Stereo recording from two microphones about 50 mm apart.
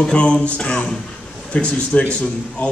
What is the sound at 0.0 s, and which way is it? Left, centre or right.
A man's voice, left.